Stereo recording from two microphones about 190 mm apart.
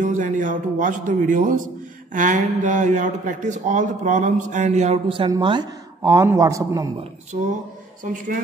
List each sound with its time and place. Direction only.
0.0 s speech: 40° right (ahead or behind); by 6.9 s 20° right (ahead or behind)
8.0 s speech: 45° right (ahead or behind)